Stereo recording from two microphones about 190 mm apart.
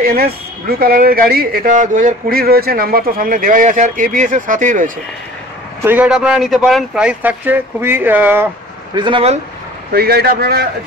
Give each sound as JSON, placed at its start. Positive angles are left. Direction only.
{"t": 0.0, "sound": "speech", "side_deg": -50}
{"t": 5.9, "sound": "speech", "side_deg": -5}
{"t": 8.9, "sound": "speech", "side_deg": -25}
{"t": 9.9, "sound": "a man's voice", "side_deg": -55}